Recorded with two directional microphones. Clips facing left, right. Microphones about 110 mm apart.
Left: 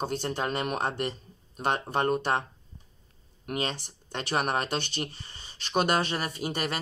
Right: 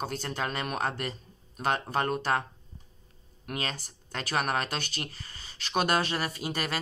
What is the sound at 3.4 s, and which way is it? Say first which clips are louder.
Speech: left 3 dB; 25° left (ahead or behind).